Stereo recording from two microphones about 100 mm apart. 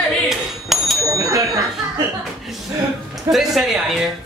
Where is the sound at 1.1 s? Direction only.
35° right (ahead or behind).